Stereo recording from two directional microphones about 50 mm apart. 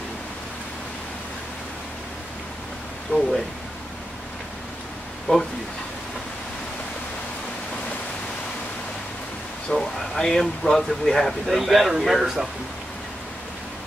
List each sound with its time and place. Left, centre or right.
3.1 s speech: left
5.3 s speech: left
9.7 s speech: centre